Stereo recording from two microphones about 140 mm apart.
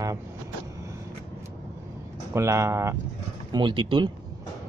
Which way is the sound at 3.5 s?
35° right (ahead or behind).